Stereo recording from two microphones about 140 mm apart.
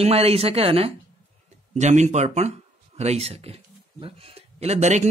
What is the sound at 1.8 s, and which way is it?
Speech, 55° right (ahead or behind).